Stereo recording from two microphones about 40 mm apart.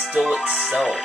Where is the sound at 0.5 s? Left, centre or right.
Centre.